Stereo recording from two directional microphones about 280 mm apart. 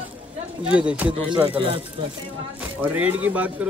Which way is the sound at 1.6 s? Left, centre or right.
Centre.